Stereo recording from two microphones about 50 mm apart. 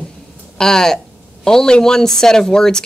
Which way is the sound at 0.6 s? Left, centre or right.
Centre.